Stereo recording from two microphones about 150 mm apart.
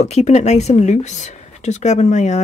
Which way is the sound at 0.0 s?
50° left (ahead or behind).